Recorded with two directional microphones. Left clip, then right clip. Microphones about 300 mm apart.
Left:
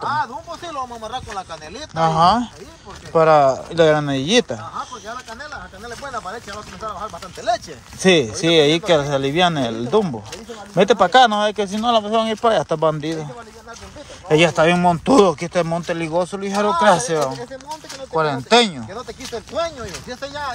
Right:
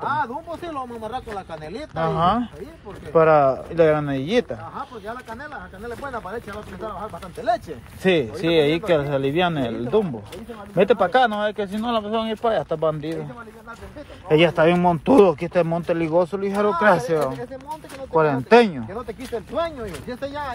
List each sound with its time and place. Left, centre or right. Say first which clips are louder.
0.0 s a sound: left 2 dB; centre
2.0 s speech: left 6 dB; left
14.3 s speech: left 2 dB; centre
19.5 s speech: left 2 dB; left